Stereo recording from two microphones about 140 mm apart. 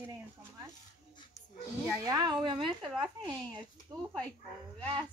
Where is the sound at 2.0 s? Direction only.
30° right (ahead or behind).